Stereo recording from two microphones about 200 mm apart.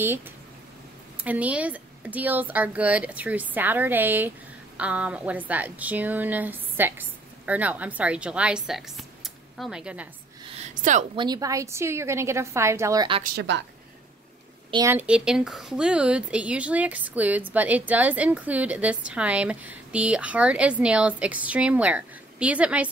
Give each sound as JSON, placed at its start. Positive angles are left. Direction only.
{"t": 1.2, "sound": "speech", "side_deg": -5}
{"t": 10.7, "sound": "a woman's voice", "side_deg": -40}
{"t": 11.1, "sound": "speech", "side_deg": -20}
{"t": 13.4, "sound": "a woman's voice", "side_deg": -60}
{"t": 14.7, "sound": "speech", "side_deg": -15}